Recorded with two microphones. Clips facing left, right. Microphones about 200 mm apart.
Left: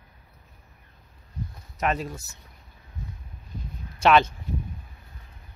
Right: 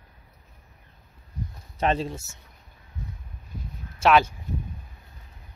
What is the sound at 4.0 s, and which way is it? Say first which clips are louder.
Speech: even; 5° right (ahead or behind).